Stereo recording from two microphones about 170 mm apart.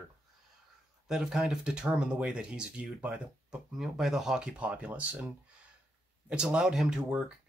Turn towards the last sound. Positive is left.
turn(degrees=-5)  # may be behind; listen again after turning